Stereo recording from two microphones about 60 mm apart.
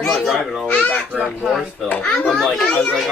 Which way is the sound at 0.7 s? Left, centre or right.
Centre.